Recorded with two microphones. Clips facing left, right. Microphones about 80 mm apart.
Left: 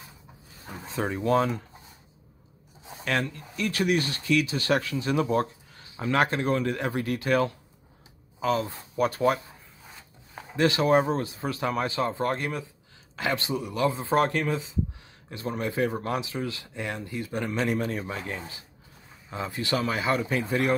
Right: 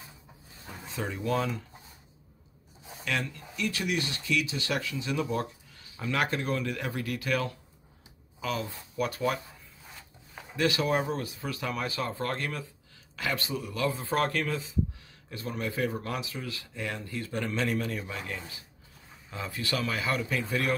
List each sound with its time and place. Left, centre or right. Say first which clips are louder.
0.8 s speech: left 6 dB; left
3.0 s speech: left 5 dB; left
10.5 s speech: left 6 dB; left